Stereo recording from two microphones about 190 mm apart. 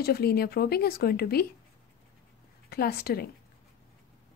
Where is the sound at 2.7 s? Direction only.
55° left (ahead or behind).